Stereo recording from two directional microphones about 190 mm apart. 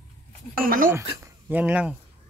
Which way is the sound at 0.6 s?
50° right (ahead or behind).